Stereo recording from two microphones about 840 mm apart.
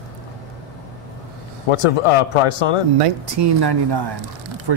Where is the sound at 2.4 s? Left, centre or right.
Left.